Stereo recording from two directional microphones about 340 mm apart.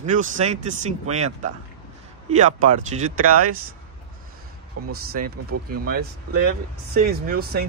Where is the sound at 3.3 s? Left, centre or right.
Right.